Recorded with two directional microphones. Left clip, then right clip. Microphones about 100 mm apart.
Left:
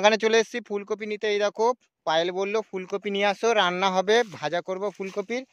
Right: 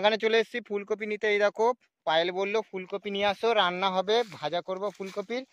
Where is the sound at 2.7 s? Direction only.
90° left.